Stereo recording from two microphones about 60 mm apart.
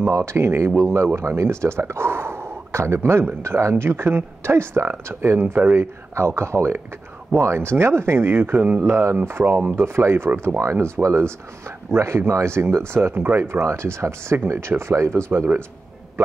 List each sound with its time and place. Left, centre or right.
0.0 s speech: right
5.5 s speech: right
5.8 s speech: right
10.6 s speech: right
13.4 s speech: right